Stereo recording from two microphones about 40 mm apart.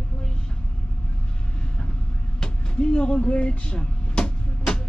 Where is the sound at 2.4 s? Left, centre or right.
Left.